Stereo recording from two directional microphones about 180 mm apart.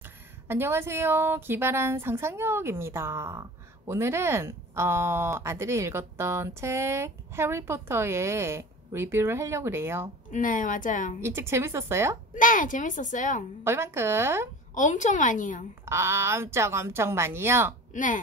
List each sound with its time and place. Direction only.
0.5 s a woman's voice: 15° right (ahead or behind)
10.3 s speech: 45° left (ahead or behind)
11.1 s a woman's voice: 15° right (ahead or behind)
12.4 s speech: 45° left (ahead or behind)
13.7 s a woman's voice: 15° right (ahead or behind)
14.7 s speech: 45° left (ahead or behind)
15.8 s a woman's voice: 15° right (ahead or behind)
17.9 s speech: 45° left (ahead or behind)